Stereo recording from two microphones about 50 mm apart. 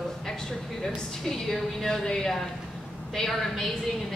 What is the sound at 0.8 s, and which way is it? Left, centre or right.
A woman's voice, centre.